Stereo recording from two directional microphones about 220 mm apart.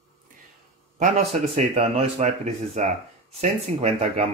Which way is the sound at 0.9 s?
30° right (ahead or behind).